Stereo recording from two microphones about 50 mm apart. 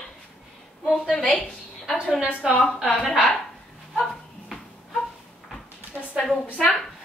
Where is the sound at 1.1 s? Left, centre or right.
Left.